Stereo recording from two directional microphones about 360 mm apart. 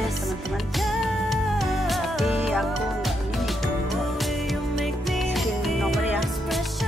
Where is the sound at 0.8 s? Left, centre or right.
Centre.